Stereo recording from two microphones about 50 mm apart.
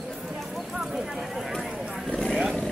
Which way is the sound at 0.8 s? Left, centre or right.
Centre.